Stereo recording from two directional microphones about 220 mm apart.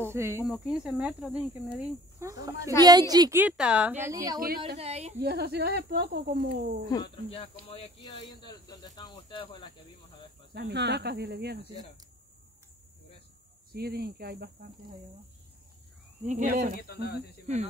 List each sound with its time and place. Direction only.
0.0 s a woman's voice: 10° right (ahead or behind)
2.2 s a woman's voice: 10° right (ahead or behind)
4.6 s a woman's voice: 30° right (ahead or behind)
5.2 s speech: 45° right (ahead or behind)
6.9 s speech: 20° left (ahead or behind)
10.5 s speech: 50° right (ahead or behind)
13.7 s speech: 45° right (ahead or behind)
16.3 s speech: 35° right (ahead or behind)
16.9 s speech: 50° left (ahead or behind)